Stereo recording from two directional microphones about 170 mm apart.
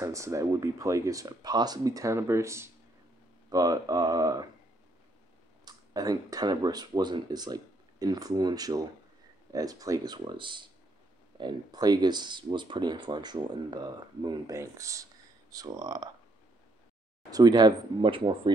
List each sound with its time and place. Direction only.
0.0 s speech: 20° right (ahead or behind)
5.7 s speech: 20° right (ahead or behind)
17.3 s speech: 25° right (ahead or behind)